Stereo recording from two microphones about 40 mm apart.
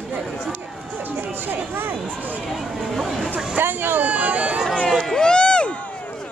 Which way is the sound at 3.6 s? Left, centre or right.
Right.